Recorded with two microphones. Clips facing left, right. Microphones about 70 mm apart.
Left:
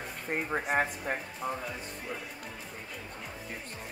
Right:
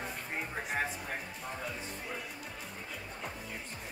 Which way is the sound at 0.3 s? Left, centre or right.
Left.